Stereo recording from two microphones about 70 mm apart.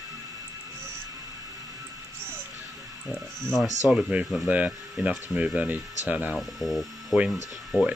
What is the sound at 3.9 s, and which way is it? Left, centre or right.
Speech, centre.